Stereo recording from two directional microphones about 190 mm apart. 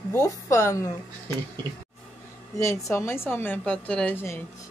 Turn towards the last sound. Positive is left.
turn(degrees=10)  # may be behind; listen again after turning